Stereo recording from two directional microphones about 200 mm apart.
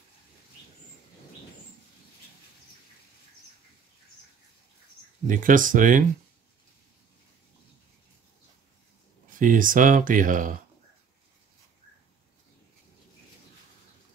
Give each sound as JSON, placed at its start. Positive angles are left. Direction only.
{"t": 5.2, "sound": "speech", "side_deg": -40}
{"t": 9.4, "sound": "speech", "side_deg": -45}